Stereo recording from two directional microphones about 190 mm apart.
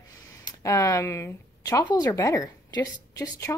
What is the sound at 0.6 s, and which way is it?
A woman's voice, 15° left (ahead or behind).